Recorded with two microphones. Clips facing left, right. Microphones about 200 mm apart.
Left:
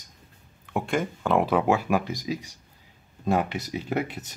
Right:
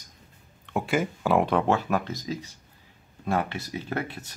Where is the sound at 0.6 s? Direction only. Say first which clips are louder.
Right 1 dB; centre (ahead or behind).